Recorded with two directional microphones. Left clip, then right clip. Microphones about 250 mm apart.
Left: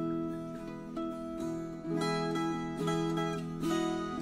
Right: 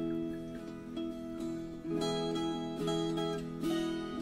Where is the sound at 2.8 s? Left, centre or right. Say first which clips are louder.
Left 1 dB; left.